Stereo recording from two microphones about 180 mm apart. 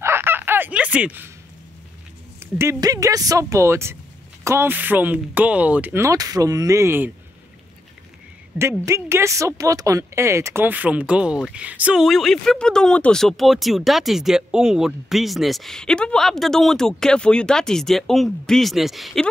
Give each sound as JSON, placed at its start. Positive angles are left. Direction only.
{"t": 0.0, "sound": "fowl", "side_deg": -15}
{"t": 2.6, "sound": "speech", "side_deg": -20}
{"t": 8.5, "sound": "speech", "side_deg": -15}